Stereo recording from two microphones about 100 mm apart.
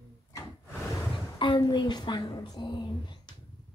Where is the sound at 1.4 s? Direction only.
45° left (ahead or behind).